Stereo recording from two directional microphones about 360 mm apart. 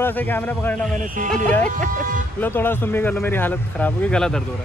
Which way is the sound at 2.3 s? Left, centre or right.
Centre.